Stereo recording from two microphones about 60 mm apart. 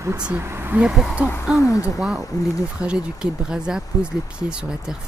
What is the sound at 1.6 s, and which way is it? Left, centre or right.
Speech, left.